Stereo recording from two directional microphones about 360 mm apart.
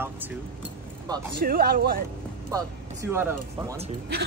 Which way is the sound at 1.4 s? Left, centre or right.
Right.